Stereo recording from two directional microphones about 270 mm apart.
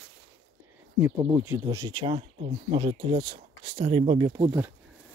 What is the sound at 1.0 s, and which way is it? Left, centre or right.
Speech, centre.